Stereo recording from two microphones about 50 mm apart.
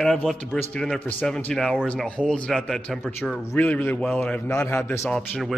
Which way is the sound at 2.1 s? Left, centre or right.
Left.